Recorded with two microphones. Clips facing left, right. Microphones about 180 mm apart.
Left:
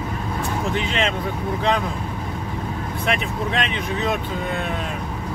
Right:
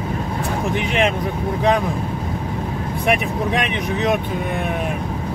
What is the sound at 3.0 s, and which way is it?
Speech, 15° right (ahead or behind).